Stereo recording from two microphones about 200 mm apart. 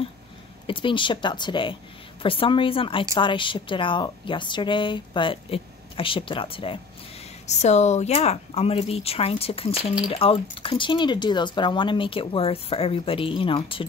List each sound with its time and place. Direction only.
0.7 s speech: 25° left (ahead or behind)